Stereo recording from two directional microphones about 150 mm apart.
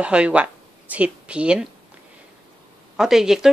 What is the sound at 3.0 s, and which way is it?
Speech, centre (ahead or behind).